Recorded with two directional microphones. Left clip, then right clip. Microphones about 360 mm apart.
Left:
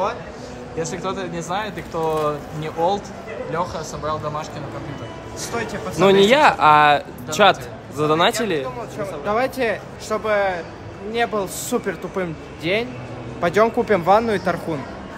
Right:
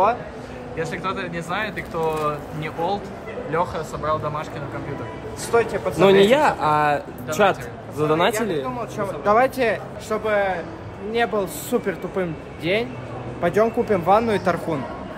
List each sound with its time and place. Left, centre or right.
0.7 s speech: centre
5.5 s speech: centre
5.9 s speech: centre
8.9 s speech: centre